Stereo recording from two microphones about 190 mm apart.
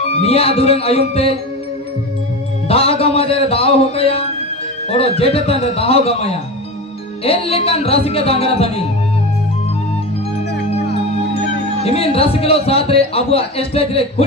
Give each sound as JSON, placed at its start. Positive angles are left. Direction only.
{"t": 0.2, "sound": "a man's voice", "side_deg": 30}
{"t": 2.7, "sound": "a man's voice", "side_deg": 30}
{"t": 11.8, "sound": "a man's voice", "side_deg": 30}